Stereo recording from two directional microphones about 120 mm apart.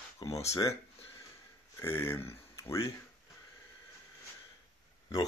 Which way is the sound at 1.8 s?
20° left (ahead or behind).